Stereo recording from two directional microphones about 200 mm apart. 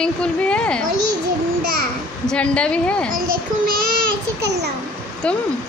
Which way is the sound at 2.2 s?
5° left (ahead or behind).